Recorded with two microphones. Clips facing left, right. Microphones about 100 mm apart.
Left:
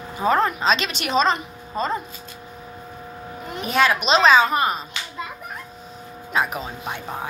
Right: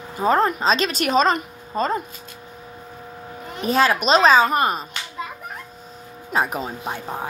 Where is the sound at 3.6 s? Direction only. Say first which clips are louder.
Right 1 dB; 35° right (ahead or behind).